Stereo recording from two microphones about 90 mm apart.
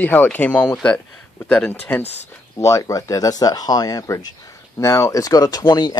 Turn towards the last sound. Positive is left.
turn(degrees=55)  # may be behind; listen again after turning